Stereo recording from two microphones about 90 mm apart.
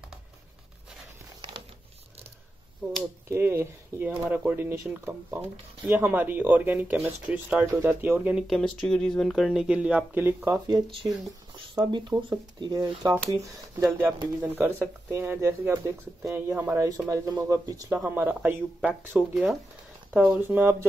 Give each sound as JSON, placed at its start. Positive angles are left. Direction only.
{"t": 3.3, "sound": "speech", "side_deg": -25}
{"t": 7.8, "sound": "speech", "side_deg": -25}
{"t": 8.4, "sound": "speech", "side_deg": 0}
{"t": 10.2, "sound": "speech", "side_deg": -25}
{"t": 11.6, "sound": "speech", "side_deg": -60}
{"t": 12.7, "sound": "speech", "side_deg": -40}
{"t": 13.9, "sound": "speech", "side_deg": -25}
{"t": 17.1, "sound": "speech", "side_deg": -40}
{"t": 18.0, "sound": "speech", "side_deg": -20}
{"t": 19.1, "sound": "speech", "side_deg": -10}
{"t": 20.3, "sound": "speech", "side_deg": -20}